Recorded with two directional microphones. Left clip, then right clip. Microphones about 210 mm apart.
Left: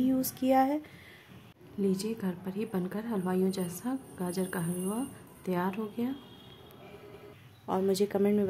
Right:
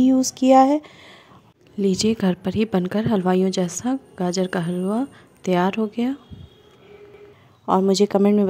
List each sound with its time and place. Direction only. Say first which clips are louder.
0.0 s a woman's voice: right 12 dB; 30° right (ahead or behind)
7.6 s a woman's voice: right 11 dB; 35° right (ahead or behind)